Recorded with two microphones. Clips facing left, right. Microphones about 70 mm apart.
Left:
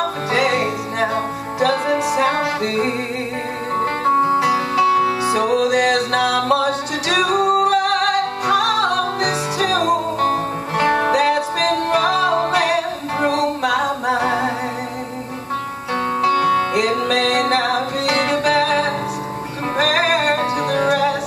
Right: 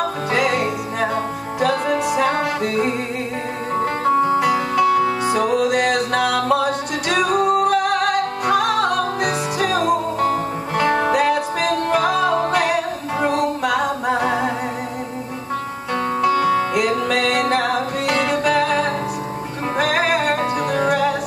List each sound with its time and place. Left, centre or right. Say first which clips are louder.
0.4 s music: left 2 dB; left
1.9 s music: left 1 dB; centre
2.1 s music: left 1 dB; left
3.8 s music: left 1 dB; left
4.4 s music: left 1 dB; centre
5.3 s music: left 1 dB; left
16.3 s music: left 1 dB; left